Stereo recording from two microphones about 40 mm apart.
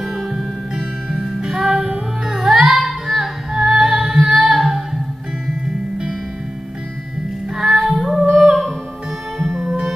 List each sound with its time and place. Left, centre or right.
0.1 s music: centre
7.5 s child singing: centre
9.6 s music: centre